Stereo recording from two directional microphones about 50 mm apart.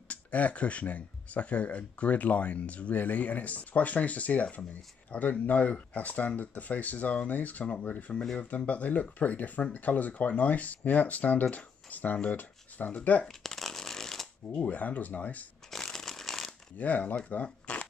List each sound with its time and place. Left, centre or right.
0.1 s speech: left
13.2 s shuffling cards: centre
14.7 s speech: left
15.7 s a sound: centre
16.7 s speech: left